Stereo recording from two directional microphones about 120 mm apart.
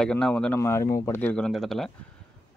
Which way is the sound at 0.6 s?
25° left (ahead or behind).